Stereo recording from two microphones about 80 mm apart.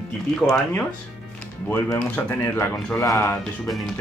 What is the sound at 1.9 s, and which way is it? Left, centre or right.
Speech, left.